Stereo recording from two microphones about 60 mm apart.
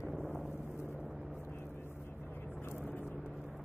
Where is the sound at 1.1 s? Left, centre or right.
Centre.